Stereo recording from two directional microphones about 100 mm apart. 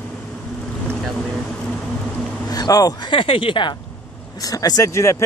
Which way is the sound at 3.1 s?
60° left (ahead or behind).